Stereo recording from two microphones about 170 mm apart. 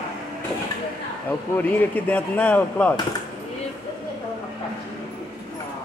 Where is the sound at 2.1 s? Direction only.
10° left (ahead or behind).